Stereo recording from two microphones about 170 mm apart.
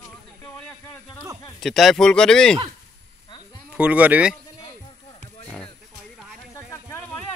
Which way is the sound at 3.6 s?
10° right (ahead or behind).